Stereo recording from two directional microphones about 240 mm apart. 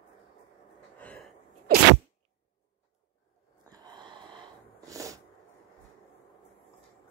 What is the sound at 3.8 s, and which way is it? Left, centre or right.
Wheeze, centre.